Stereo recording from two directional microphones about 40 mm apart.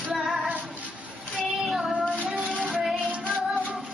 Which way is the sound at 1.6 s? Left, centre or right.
Centre.